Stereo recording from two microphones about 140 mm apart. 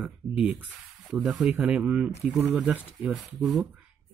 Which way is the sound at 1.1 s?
5° right (ahead or behind).